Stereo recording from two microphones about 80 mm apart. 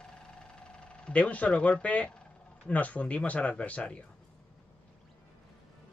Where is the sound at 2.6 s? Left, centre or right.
Centre.